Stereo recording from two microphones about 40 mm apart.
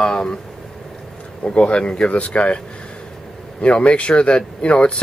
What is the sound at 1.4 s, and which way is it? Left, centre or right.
Speech, left.